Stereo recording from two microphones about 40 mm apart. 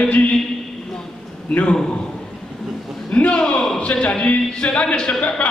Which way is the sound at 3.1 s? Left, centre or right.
Left.